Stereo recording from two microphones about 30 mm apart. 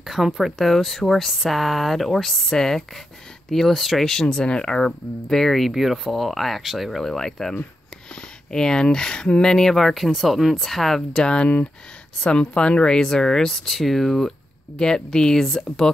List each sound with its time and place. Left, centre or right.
0.0 s speech: centre
0.6 s speech: centre
4.1 s speech: centre
5.7 s speech: centre
6.6 s speech: centre
7.0 s speech: centre
9.8 s speech: centre
12.2 s speech: left; by 13.7 s centre
13.7 s speech: centre